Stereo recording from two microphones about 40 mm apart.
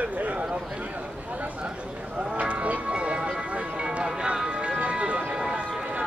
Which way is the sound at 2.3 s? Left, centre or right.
Right.